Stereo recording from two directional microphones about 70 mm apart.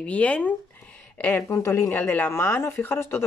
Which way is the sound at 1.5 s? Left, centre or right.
Left.